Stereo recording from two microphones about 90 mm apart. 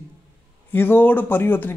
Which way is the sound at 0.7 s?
25° left (ahead or behind).